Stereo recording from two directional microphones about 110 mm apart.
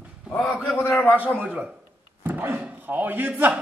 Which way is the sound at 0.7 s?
15° left (ahead or behind).